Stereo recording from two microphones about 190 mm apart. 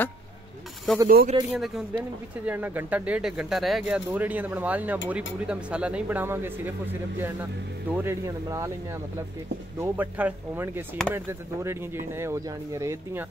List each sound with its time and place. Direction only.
1.0 s speech: 45° right (ahead or behind)
1.5 s speech: centre (ahead or behind)
9.8 s speech: 10° right (ahead or behind)